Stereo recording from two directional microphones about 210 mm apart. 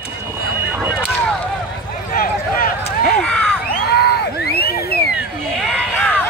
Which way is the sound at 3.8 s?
50° left (ahead or behind).